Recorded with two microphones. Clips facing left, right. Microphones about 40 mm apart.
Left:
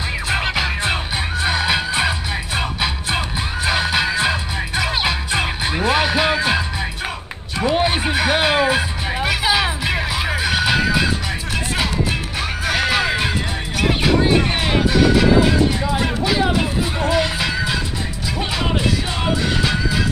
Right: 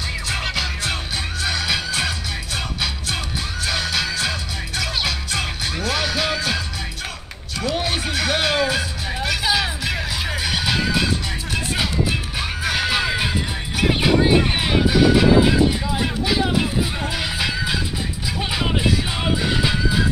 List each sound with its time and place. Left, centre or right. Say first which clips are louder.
0.3 s music: left 5 dB; left; by 20.1 s centre